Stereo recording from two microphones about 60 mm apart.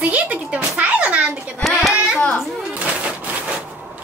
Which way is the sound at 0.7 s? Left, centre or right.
Right.